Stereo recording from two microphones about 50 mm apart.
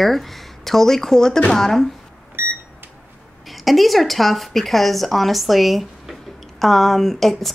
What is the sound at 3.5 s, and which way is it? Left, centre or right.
A woman's voice, centre.